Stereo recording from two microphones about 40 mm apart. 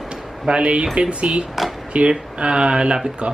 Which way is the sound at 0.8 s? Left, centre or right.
Right.